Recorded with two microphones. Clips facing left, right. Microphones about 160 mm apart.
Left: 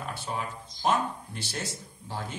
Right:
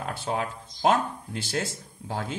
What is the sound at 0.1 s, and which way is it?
Speech, 50° right (ahead or behind).